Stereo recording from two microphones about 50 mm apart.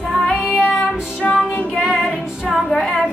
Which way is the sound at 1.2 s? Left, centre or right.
Left.